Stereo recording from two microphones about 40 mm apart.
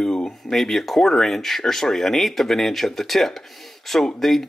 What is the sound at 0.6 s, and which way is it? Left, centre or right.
Speech, centre.